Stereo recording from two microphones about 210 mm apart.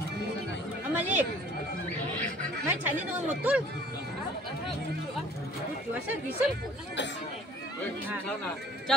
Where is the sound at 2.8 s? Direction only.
10° right (ahead or behind).